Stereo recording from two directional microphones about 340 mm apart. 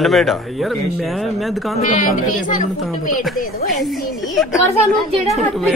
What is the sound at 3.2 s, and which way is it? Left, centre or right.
A man's voice, centre.